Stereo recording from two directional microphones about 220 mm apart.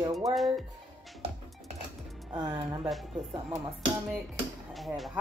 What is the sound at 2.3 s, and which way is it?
Speech, 20° right (ahead or behind).